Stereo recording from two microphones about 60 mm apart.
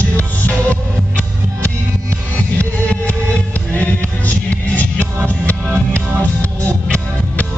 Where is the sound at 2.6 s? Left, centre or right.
Left.